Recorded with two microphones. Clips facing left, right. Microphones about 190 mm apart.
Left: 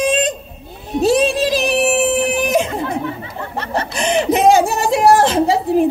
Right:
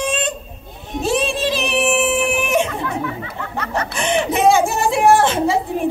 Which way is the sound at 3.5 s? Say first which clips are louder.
Left 2 dB; 35° left (ahead or behind).